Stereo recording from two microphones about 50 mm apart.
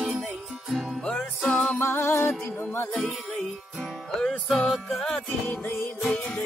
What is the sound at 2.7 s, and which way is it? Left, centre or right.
Music, left.